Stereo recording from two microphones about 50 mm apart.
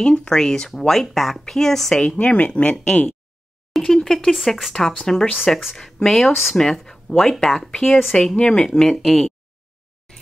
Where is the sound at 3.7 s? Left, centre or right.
Centre.